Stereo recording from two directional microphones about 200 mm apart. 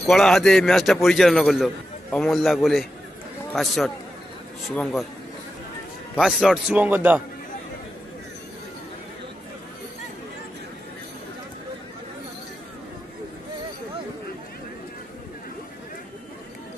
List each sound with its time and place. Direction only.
0.1 s a man's voice: centre (ahead or behind)
6.1 s a man's voice: centre (ahead or behind)